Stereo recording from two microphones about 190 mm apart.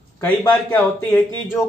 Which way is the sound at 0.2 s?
10° left (ahead or behind).